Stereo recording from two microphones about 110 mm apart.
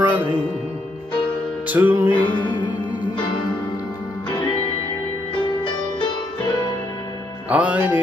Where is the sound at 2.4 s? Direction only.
45° left (ahead or behind).